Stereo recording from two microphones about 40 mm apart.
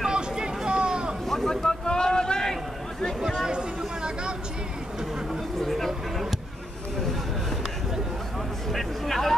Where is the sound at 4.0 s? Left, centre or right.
Right.